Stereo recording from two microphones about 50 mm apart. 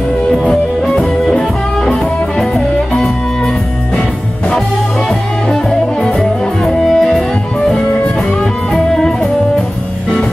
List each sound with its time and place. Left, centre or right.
1.2 s music: centre
5.5 s music: centre